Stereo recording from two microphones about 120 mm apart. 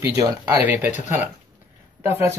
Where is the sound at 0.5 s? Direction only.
15° right (ahead or behind).